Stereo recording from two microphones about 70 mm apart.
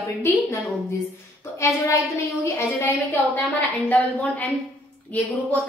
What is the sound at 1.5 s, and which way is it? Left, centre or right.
Speech, left.